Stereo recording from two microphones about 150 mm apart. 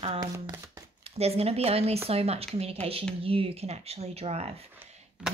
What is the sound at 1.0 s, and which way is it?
Speech, 40° right (ahead or behind).